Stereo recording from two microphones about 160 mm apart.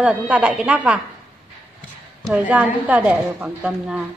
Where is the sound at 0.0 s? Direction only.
5° right (ahead or behind).